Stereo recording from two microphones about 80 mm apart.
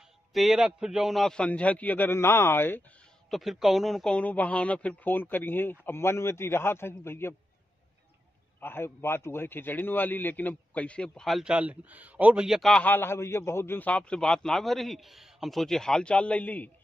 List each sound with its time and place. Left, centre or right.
0.3 s a man's voice: centre
1.4 s speech: centre
3.3 s a man's voice: centre
4.1 s speech: centre
8.5 s speech: left
11.2 s a man's voice: centre
11.5 s speech: centre
12.4 s a man's voice: centre
12.8 s a man's voice: left